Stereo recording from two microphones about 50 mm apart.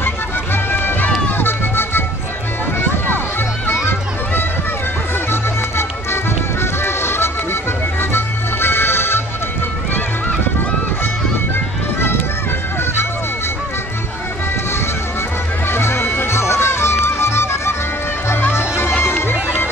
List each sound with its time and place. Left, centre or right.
0.0 s music: left
2.8 s a sound: left
3.8 s music: left
6.6 s music: left
8.0 s accordion: left
15.7 s music: left